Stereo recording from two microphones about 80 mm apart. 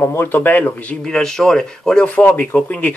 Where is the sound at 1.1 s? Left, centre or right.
Centre.